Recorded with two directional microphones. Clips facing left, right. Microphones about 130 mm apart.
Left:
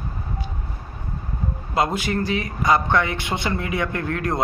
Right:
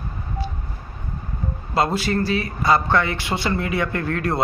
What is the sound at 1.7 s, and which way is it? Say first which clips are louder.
A man's voice: right 1 dB; 15° left (ahead or behind).